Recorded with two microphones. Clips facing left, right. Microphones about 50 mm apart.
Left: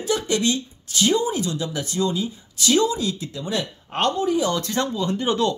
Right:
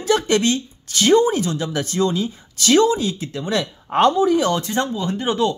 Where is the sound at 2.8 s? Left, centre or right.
Right.